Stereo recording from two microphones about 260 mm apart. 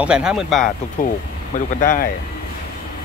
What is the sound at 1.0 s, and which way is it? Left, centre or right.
Speech, left.